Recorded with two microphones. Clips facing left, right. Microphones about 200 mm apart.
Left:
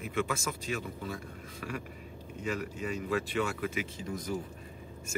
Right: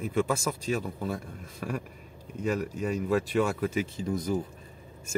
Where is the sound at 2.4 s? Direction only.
40° right (ahead or behind).